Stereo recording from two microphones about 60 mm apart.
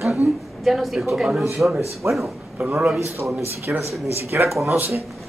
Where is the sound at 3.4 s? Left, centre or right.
Right.